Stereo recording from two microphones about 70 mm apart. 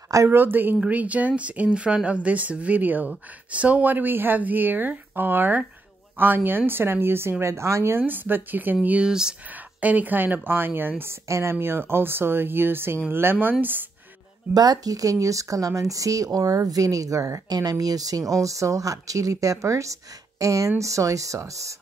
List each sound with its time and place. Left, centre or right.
0.3 s speech: right
8.0 s speech: right
8.8 s speech: centre
9.8 s speech: right
11.2 s speech: right
14.5 s speech: right